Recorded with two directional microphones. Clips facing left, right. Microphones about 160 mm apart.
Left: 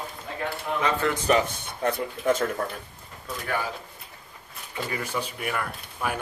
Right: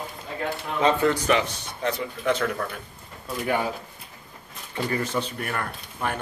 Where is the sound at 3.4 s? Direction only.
20° right (ahead or behind).